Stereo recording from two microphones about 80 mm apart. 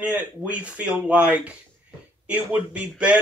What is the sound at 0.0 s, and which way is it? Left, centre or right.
Speech, centre.